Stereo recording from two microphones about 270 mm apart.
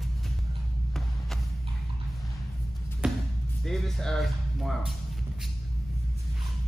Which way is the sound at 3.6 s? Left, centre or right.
Centre.